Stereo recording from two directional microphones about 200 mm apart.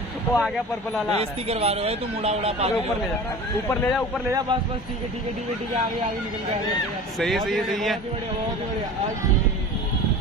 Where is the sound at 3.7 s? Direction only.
5° left (ahead or behind).